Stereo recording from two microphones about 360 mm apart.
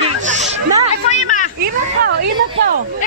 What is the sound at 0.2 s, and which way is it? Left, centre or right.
Music, centre.